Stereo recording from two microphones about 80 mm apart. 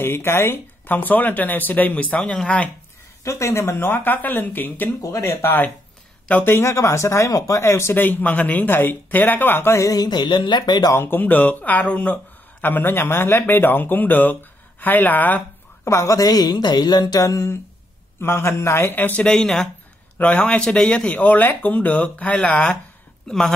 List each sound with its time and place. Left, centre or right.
0.0 s speech: left; by 2.7 s centre
3.3 s speech: left
5.0 s speech: left
7.9 s speech: left
9.8 s a woman's voice: left
10.9 s speech: left
15.8 s a woman's voice: left
17.2 s speech: left
18.2 s speech: left
19.2 s speech: centre
20.2 s speech: centre
23.2 s speech: centre